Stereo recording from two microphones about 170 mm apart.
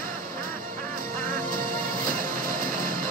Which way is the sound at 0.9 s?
55° right (ahead or behind).